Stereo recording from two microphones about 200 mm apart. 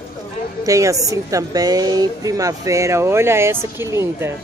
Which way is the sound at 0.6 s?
15° right (ahead or behind).